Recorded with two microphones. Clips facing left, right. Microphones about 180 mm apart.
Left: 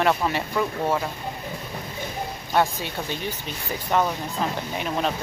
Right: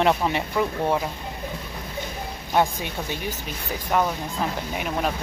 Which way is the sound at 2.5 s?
15° right (ahead or behind).